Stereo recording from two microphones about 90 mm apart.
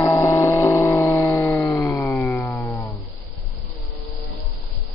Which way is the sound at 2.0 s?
15° left (ahead or behind).